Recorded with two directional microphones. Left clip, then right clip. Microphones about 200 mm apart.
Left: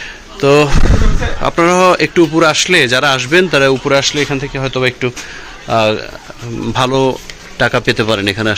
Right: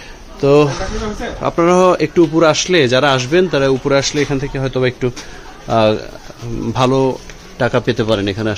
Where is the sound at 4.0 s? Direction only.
15° right (ahead or behind); by 8.5 s centre (ahead or behind).